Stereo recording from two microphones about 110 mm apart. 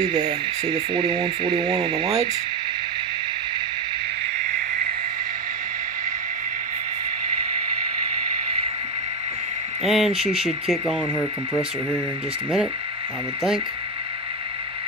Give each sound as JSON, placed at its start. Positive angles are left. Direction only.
{"t": 0.0, "sound": "radio", "side_deg": -40}
{"t": 9.8, "sound": "speech", "side_deg": 0}